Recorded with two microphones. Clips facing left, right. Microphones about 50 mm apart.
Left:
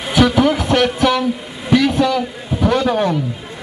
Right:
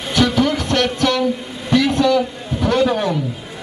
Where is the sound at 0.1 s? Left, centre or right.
Centre.